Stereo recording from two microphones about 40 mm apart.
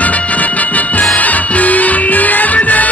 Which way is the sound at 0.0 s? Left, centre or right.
Left.